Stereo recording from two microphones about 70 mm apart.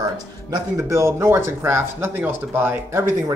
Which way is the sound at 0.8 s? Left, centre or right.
Right.